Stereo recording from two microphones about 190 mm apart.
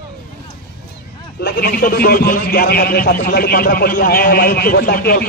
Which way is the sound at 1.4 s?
55° left (ahead or behind).